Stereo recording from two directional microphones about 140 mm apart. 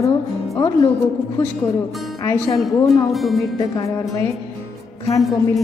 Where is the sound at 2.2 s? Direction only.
25° left (ahead or behind).